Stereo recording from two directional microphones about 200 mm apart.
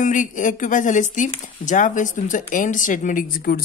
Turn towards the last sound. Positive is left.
turn(degrees=45)  # may be behind; listen again after turning